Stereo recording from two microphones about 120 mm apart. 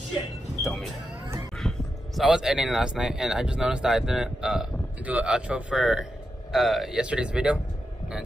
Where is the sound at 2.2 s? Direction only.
5° right (ahead or behind).